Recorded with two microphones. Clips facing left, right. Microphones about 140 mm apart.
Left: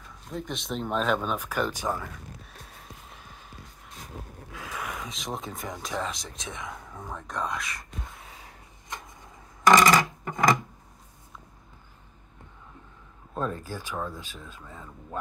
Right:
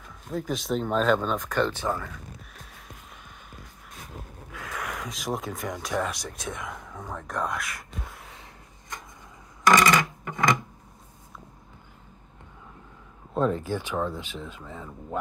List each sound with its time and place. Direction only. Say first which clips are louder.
0.3 s speech: right 5 dB; centre (ahead or behind); by 2.0 s 15° left (ahead or behind)
4.6 s a sound: right 1 dB; 20° left (ahead or behind)
4.8 s speech: right 6 dB; centre (ahead or behind)
6.4 s speech: right 2 dB; 20° left (ahead or behind)
9.7 s a sound: left 1 dB; 25° left (ahead or behind)
13.3 s speech: right 7 dB; 20° right (ahead or behind)